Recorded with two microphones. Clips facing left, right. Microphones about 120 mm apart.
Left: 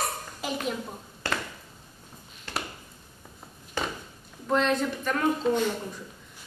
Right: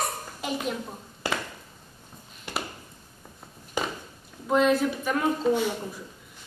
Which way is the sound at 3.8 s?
15° right (ahead or behind).